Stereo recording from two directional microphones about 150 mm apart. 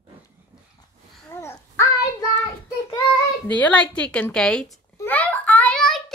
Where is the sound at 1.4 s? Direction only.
20° left (ahead or behind).